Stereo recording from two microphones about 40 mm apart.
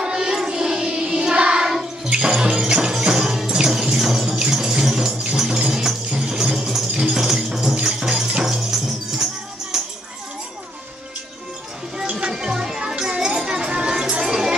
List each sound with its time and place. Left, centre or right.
0.0 s music: centre
4.3 s a sound: centre
5.3 s music: centre
12.3 s music: centre